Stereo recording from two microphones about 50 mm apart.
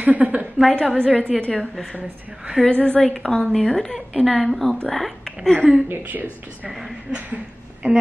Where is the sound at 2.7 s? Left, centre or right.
Left.